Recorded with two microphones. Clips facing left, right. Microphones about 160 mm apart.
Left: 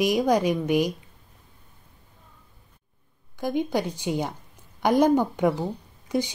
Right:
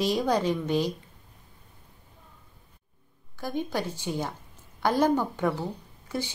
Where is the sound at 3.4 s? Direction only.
15° left (ahead or behind).